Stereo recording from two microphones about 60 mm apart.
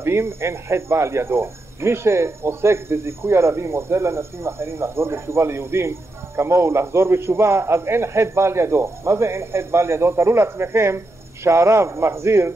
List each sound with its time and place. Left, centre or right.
0.0 s speech: right